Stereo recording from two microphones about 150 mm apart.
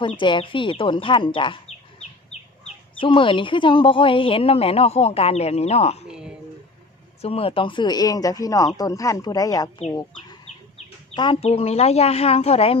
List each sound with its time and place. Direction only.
0.0 s a woman's voice: 35° left (ahead or behind)
3.0 s a woman's voice: 35° left (ahead or behind)
6.0 s a sound: 5° right (ahead or behind)
7.2 s speech: 40° left (ahead or behind); by 9.7 s 25° left (ahead or behind)
11.1 s a woman's voice: 30° left (ahead or behind)
11.4 s speech: 45° left (ahead or behind)